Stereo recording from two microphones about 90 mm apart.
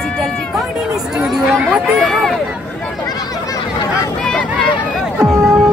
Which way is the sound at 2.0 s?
Centre (ahead or behind).